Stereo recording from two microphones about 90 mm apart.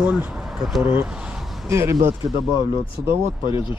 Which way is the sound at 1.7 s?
30° right (ahead or behind).